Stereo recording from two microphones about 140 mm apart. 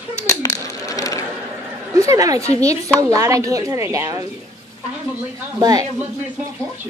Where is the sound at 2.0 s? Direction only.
25° right (ahead or behind).